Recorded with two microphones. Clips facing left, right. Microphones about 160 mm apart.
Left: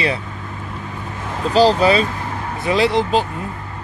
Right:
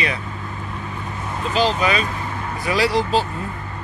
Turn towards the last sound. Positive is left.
turn(degrees=20)  # may be behind; listen again after turning